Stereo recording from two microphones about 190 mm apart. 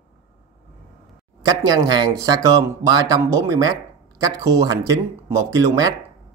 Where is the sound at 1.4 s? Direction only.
20° right (ahead or behind).